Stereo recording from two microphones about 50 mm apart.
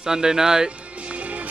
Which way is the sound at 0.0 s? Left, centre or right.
Centre.